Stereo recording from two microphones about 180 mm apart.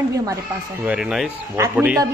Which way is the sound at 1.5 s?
15° right (ahead or behind).